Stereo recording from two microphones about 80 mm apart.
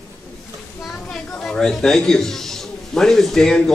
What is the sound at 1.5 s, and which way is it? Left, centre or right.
Speech, centre.